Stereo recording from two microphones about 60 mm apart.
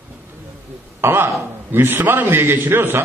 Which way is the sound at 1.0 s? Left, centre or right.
Right.